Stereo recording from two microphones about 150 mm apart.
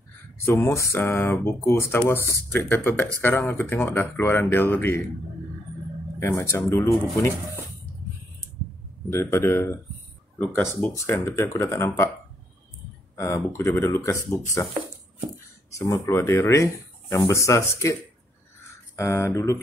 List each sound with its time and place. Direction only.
0.5 s speech: 20° left (ahead or behind)
6.1 s speech: 15° left (ahead or behind)
9.1 s speech: 15° left (ahead or behind)
13.1 s speech: 20° left (ahead or behind)
15.7 s speech: 20° left (ahead or behind)
18.9 s speech: 20° left (ahead or behind)